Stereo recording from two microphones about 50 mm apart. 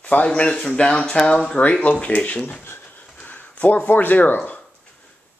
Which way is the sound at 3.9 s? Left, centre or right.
Left.